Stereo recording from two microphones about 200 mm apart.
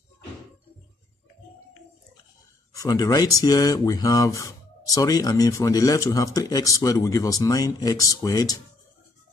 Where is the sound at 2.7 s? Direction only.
20° left (ahead or behind).